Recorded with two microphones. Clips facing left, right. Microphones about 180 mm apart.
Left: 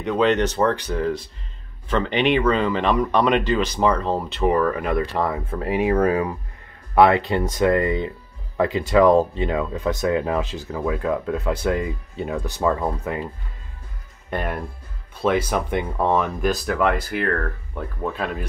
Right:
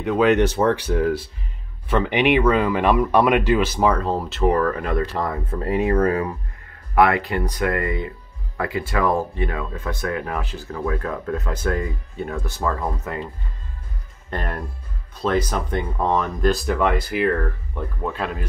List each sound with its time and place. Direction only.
0.0 s speech: 5° right (ahead or behind)
4.6 s speech: 15° left (ahead or behind)
14.3 s speech: 10° left (ahead or behind)